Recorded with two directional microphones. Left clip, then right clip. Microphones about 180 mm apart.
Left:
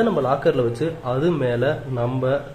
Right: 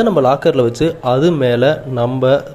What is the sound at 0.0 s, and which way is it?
A man's voice, 30° right (ahead or behind).